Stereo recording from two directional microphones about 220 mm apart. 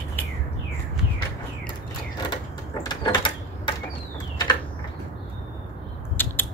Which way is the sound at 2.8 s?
20° left (ahead or behind).